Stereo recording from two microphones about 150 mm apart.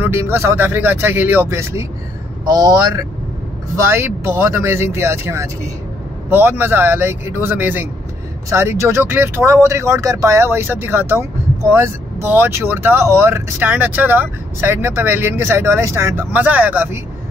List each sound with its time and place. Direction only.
0.0 s speech: 15° right (ahead or behind)